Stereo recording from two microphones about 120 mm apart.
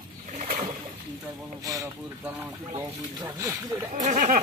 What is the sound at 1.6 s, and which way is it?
Speech, 30° right (ahead or behind).